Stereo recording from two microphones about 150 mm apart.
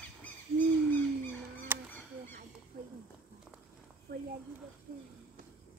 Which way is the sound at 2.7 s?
80° right.